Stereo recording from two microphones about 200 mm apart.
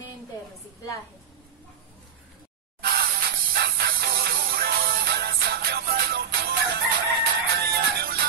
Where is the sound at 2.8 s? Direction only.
50° right (ahead or behind).